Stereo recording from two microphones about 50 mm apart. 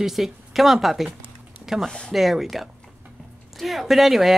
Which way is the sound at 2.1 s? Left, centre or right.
Centre.